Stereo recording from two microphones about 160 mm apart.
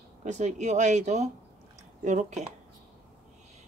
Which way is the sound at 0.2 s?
45° right (ahead or behind).